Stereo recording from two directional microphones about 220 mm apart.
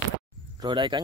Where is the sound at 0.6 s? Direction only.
20° right (ahead or behind).